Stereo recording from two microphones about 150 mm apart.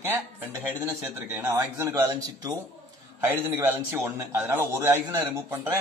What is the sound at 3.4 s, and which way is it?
A man's voice, 15° right (ahead or behind).